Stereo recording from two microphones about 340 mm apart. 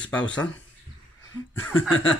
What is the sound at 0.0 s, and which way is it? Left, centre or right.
Speech, centre.